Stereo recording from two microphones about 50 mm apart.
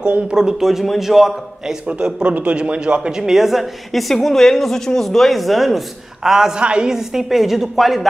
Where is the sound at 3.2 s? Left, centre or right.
Centre.